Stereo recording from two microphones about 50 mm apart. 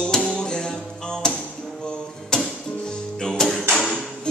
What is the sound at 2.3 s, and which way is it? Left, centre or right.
Music, centre.